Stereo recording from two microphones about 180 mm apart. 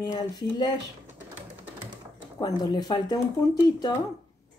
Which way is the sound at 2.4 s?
20° left (ahead or behind).